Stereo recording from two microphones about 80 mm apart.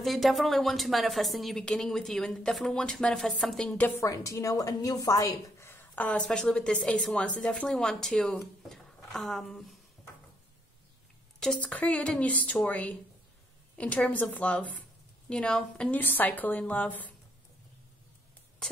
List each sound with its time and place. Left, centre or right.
0.0 s a woman's voice: centre
4.0 s a woman's voice: left
5.9 s a woman's voice: centre
8.6 s a sound: centre
11.3 s a woman's voice: centre
11.6 s a woman's voice: centre
16.0 s a woman's voice: left
18.6 s a sound: centre